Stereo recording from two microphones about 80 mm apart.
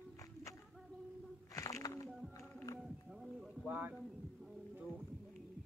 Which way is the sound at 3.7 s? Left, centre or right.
Right.